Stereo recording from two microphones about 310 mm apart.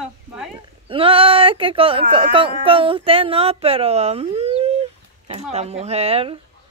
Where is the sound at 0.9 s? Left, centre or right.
Centre.